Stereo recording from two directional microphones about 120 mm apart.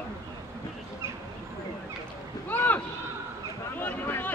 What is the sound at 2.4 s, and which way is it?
Speech, 15° left (ahead or behind).